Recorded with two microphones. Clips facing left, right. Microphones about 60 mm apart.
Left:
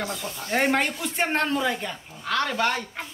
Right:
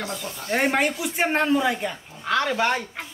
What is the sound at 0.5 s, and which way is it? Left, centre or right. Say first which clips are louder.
A woman's voice: right 1 dB; centre.